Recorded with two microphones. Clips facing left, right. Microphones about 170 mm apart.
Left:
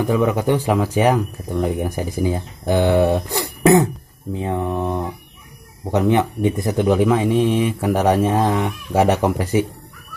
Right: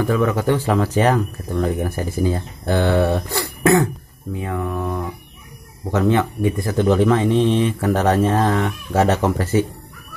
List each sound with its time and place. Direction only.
0.0 s speech: 15° left (ahead or behind)